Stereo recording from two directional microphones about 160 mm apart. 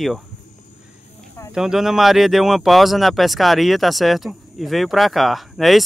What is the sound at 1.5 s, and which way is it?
Speech, 5° right (ahead or behind).